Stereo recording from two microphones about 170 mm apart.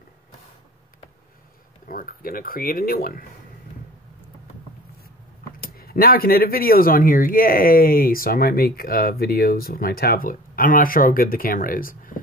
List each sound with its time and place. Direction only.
1.9 s speech: 55° left (ahead or behind)
5.6 s speech: 60° left (ahead or behind)